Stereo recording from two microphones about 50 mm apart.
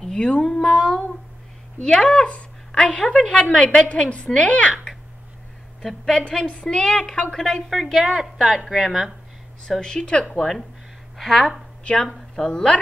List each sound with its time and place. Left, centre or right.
0.0 s a woman's voice: centre
5.8 s a woman's voice: centre
6.1 s a woman's voice: centre
7.7 s speech: centre
9.8 s a woman's voice: centre
11.8 s a woman's voice: centre